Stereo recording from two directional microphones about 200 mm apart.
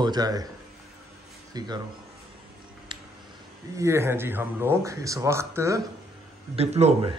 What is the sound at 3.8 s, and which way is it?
Speech, 15° right (ahead or behind).